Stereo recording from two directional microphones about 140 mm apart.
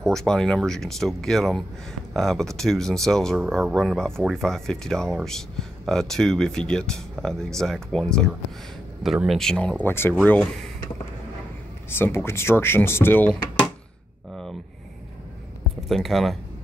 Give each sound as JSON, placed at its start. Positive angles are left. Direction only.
{"t": 0.0, "sound": "speech", "side_deg": 5}
{"t": 11.9, "sound": "speech", "side_deg": 15}
{"t": 15.9, "sound": "speech", "side_deg": 0}